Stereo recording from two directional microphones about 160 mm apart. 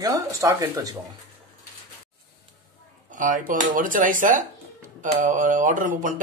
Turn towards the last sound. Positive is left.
turn(degrees=-55)  # may be behind; listen again after turning